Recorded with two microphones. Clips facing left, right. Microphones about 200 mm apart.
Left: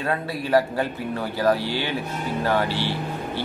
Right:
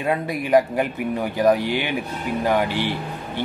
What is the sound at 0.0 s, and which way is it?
Speech, 15° right (ahead or behind).